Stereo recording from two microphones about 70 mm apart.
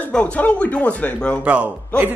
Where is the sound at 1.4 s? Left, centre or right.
Centre.